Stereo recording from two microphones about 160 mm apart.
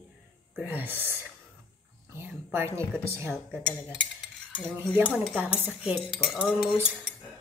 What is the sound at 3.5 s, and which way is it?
Cutlery, 5° left (ahead or behind).